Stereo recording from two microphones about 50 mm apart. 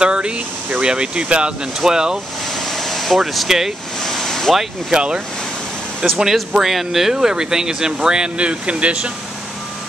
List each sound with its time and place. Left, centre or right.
0.0 s speech: right
2.5 s a sound: centre
3.2 s speech: centre
4.0 s vehicle: centre
4.9 s speech: centre
6.0 s speech: centre; by 9.1 s right